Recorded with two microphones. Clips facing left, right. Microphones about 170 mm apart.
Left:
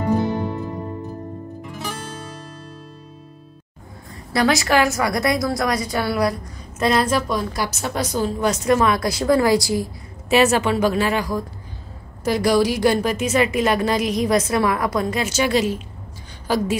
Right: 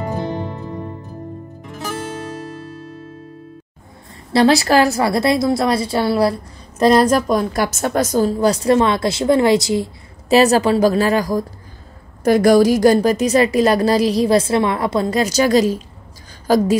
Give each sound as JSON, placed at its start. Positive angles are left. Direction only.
{"t": 4.3, "sound": "a woman's voice", "side_deg": -30}
{"t": 10.3, "sound": "a woman's voice", "side_deg": -35}
{"t": 12.3, "sound": "a woman's voice", "side_deg": -50}